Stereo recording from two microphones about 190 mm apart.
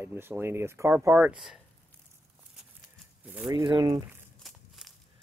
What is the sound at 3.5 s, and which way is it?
Speech, 25° right (ahead or behind).